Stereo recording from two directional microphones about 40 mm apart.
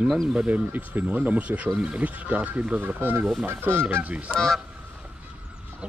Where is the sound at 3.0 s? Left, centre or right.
Right.